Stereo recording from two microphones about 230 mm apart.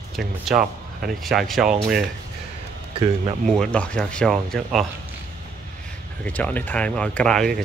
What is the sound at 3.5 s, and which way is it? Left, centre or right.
Speech, centre.